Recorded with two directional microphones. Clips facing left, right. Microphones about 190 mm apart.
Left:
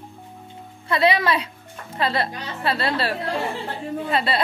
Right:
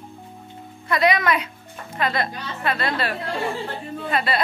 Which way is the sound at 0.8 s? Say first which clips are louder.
Even; 30° left (ahead or behind).